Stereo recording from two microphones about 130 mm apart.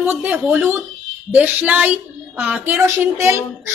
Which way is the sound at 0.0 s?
15° right (ahead or behind).